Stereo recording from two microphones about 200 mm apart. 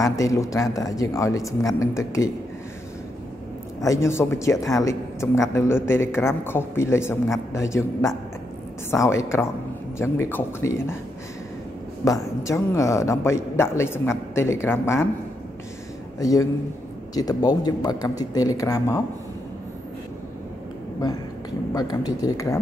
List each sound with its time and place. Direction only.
0.0 s speech: 15° left (ahead or behind)
3.8 s speech: 15° left (ahead or behind)
12.0 s speech: 15° left (ahead or behind)
16.2 s speech: 15° left (ahead or behind)
21.0 s speech: 20° left (ahead or behind)